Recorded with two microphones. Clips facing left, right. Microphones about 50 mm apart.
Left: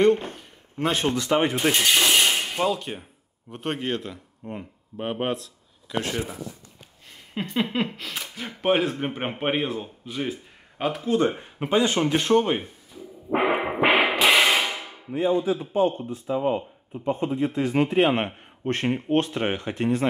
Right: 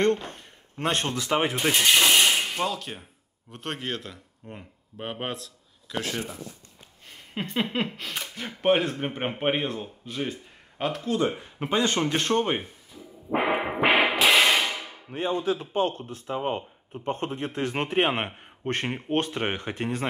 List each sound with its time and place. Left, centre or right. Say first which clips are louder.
0.0 s speech: left 4 dB; centre
7.1 s speech: left 2 dB; centre
13.3 s music: left 2 dB; centre
15.4 s a man's voice: left 3 dB; right
18.1 s a man's voice: left 4 dB; centre
18.7 s speech: left 4 dB; centre